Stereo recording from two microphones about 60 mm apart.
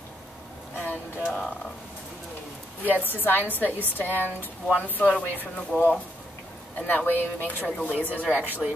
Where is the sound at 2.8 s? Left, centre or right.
Left.